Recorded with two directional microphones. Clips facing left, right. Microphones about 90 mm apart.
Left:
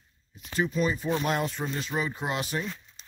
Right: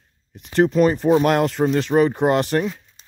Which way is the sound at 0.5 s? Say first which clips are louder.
Right 11 dB; 70° right (ahead or behind).